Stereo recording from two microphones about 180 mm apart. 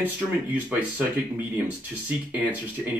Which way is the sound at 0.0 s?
10° right (ahead or behind).